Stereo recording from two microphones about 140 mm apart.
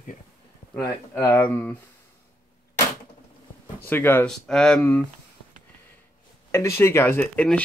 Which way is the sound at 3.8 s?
15° left (ahead or behind).